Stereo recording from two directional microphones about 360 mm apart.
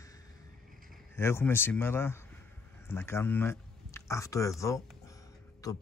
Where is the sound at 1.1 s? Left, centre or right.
Centre.